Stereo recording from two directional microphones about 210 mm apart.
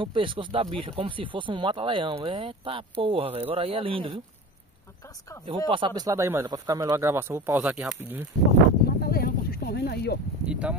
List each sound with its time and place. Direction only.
0.0 s speech: 25° right (ahead or behind)
5.7 s speech: 20° right (ahead or behind)
8.8 s a sound: 45° left (ahead or behind)
10.5 s speech: 5° right (ahead or behind)